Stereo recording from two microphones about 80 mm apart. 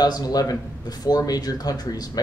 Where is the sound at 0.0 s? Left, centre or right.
Left.